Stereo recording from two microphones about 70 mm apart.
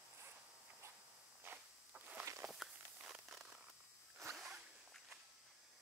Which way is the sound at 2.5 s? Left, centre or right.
Centre.